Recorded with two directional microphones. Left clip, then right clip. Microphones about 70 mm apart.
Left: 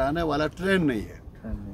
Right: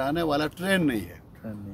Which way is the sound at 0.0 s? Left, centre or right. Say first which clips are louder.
Left 1 dB; centre.